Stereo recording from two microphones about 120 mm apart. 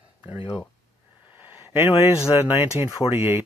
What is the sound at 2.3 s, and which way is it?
Speech, 15° right (ahead or behind).